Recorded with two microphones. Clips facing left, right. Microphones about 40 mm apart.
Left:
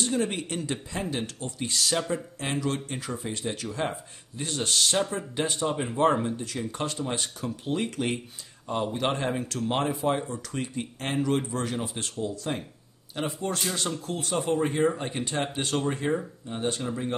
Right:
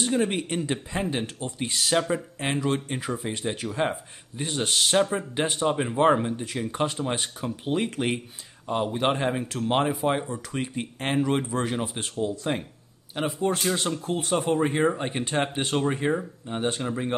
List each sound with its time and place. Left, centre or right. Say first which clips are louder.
0.0 s speech: right 3 dB; right